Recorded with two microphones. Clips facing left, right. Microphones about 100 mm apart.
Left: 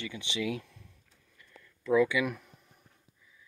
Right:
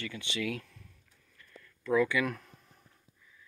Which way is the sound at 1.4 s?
20° left (ahead or behind).